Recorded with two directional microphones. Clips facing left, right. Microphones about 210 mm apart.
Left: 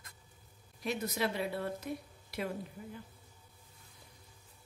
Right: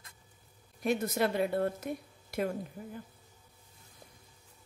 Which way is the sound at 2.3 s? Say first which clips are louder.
Right 5 dB; 45° right (ahead or behind).